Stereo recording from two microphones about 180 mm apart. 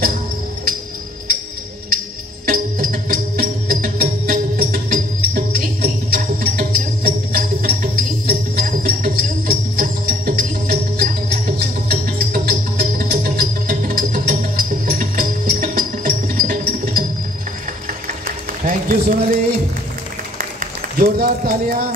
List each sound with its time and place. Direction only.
2.4 s music: 55° right (ahead or behind)
18.2 s music: 50° right (ahead or behind)
21.0 s speech: 50° right (ahead or behind)